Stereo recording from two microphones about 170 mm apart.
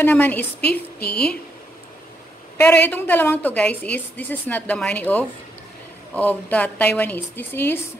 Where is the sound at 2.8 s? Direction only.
10° left (ahead or behind).